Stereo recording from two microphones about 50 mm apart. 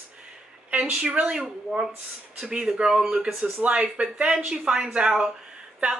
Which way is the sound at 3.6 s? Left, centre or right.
Right.